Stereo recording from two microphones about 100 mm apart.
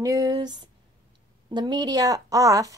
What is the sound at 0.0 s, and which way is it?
A woman's voice, 35° right (ahead or behind).